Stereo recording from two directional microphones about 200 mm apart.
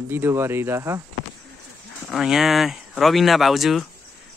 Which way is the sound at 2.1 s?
Centre (ahead or behind).